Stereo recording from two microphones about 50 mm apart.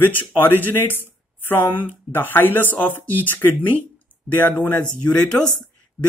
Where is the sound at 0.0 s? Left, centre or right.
Left.